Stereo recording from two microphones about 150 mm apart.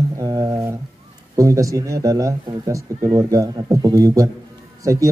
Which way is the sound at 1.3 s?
20° right (ahead or behind).